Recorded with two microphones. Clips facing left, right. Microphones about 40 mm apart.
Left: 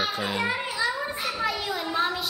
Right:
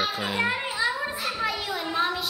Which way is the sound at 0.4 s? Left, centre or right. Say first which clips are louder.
Right 3 dB; centre.